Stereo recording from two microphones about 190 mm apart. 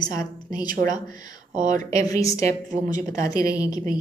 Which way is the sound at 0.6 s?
45° right (ahead or behind).